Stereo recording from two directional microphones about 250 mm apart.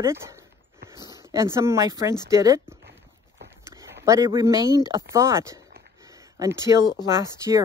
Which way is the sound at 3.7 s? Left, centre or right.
Centre.